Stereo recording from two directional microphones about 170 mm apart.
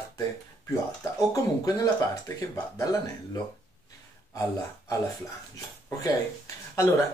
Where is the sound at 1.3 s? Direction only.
20° left (ahead or behind).